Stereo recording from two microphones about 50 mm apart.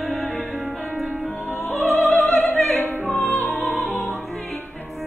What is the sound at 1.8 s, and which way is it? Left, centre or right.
Opera, centre.